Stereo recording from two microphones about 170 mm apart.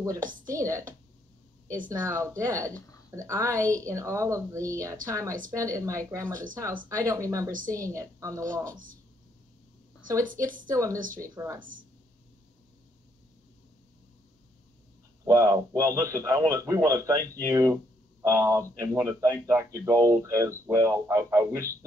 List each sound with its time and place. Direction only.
0.6 s a man's voice: 20° right (ahead or behind)
10.2 s a woman's voice: 50° right (ahead or behind)
10.7 s a man's voice: 20° right (ahead or behind)
15.2 s a man's voice: 15° right (ahead or behind)